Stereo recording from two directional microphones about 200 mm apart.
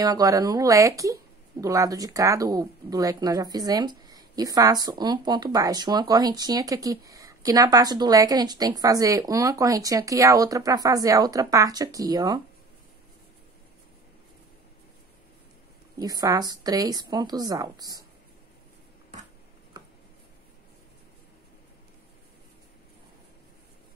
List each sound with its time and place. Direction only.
0.0 s speech: 20° right (ahead or behind)
16.0 s a woman's voice: 20° right (ahead or behind)